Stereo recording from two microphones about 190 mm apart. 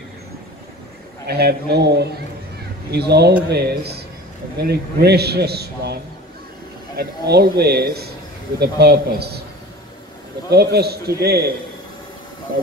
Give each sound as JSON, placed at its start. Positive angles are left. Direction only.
{"t": 1.2, "sound": "a man's voice", "side_deg": -55}
{"t": 7.0, "sound": "a man's voice", "side_deg": -55}
{"t": 10.5, "sound": "a man's voice", "side_deg": -55}